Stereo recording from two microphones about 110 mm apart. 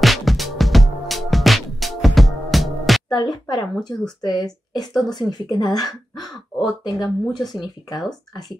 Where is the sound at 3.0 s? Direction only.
40° left (ahead or behind).